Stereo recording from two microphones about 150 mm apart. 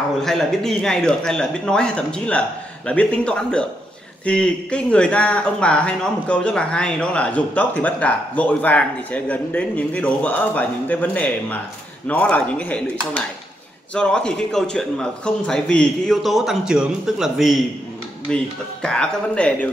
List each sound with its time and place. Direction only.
0.2 s a man's voice: centre (ahead or behind)
13.9 s a man's voice: 5° left (ahead or behind)